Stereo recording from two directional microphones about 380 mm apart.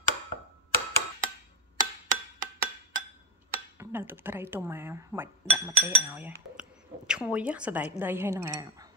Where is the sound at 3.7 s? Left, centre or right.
Centre.